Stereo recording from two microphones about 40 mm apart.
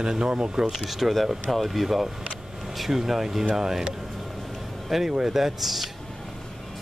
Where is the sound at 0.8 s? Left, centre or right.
Centre.